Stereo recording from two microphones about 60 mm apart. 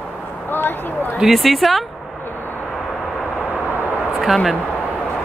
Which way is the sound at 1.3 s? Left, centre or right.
Centre.